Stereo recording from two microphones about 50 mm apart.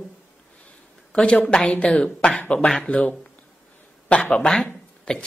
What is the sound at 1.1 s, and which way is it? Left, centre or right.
A woman's voice, centre.